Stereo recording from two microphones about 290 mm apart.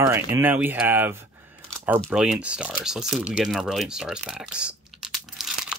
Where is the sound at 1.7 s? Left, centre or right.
Centre.